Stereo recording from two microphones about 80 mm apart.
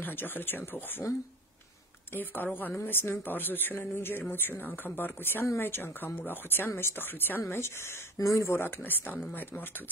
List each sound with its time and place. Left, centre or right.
0.0 s speech: left
2.1 s speech: left